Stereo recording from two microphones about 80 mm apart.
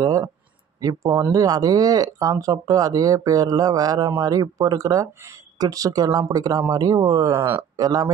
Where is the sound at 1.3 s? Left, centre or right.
Right.